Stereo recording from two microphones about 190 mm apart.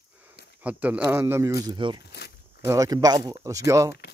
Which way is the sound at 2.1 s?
60° left (ahead or behind).